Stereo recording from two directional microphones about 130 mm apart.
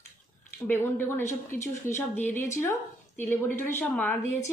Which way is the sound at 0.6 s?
15° left (ahead or behind).